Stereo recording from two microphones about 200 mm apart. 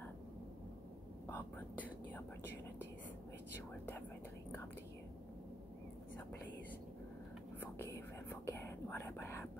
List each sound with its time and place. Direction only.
1.3 s whispering: 10° left (ahead or behind)
7.6 s whispering: 15° left (ahead or behind)